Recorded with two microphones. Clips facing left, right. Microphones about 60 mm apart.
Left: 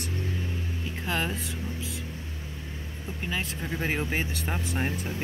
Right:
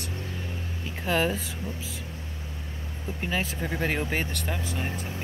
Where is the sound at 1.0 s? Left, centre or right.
Centre.